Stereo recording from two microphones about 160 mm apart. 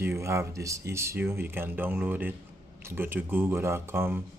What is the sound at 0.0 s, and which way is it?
Speech, 15° right (ahead or behind).